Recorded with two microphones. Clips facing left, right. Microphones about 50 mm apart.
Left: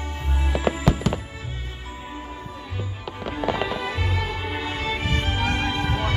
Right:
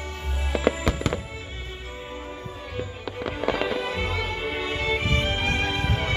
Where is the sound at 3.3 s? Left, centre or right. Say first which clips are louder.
Left 1 dB; centre.